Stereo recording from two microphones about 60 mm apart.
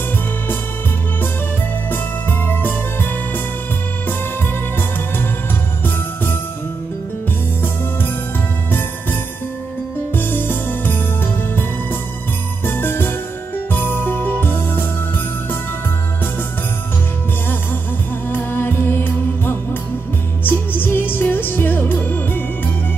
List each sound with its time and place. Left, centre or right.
1.9 s music: left
10.1 s music: left
12.6 s music: left
18.3 s music: left